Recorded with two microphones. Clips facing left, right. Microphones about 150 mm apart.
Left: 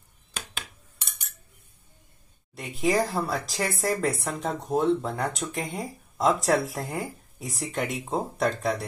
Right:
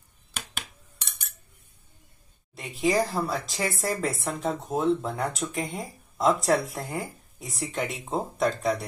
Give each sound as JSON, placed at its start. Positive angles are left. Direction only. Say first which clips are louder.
{"t": 2.5, "sound": "speech", "louder": "even", "side_deg": 0}